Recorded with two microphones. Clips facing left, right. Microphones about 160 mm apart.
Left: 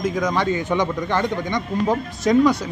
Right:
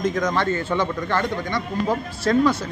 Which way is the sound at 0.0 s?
10° left (ahead or behind).